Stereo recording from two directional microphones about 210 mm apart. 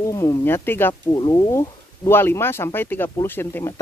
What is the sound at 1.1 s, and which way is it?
Speech, 20° left (ahead or behind).